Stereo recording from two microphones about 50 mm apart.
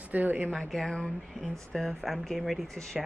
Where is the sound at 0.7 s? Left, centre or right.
Centre.